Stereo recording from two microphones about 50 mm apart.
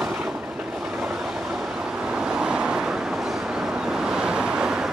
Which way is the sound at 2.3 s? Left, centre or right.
Centre.